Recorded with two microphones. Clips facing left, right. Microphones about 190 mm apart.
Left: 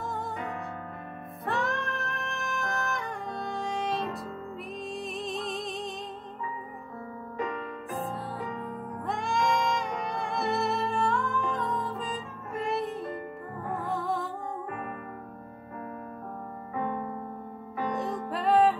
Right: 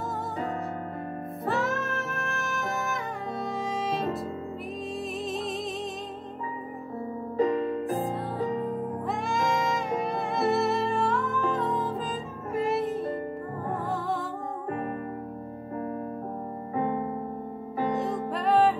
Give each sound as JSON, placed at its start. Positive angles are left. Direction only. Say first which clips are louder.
{"t": 1.4, "sound": "music", "louder": "right 2 dB", "side_deg": 0}
{"t": 5.2, "sound": "music", "louder": "right 2 dB", "side_deg": 0}
{"t": 7.3, "sound": "music", "louder": "right 10 dB", "side_deg": -35}
{"t": 9.0, "sound": "music", "louder": "left 2 dB", "side_deg": 0}
{"t": 16.7, "sound": "keyboard", "louder": "right 4 dB", "side_deg": -30}
{"t": 17.9, "sound": "music", "louder": "right 3 dB", "side_deg": 0}